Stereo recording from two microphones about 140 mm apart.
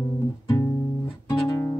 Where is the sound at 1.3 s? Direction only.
25° left (ahead or behind).